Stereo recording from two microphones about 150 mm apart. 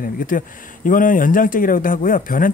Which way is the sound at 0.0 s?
65° left (ahead or behind).